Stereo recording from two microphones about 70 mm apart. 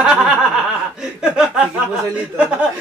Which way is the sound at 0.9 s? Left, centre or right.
Centre.